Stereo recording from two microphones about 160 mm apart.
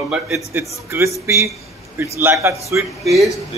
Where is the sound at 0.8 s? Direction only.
15° right (ahead or behind).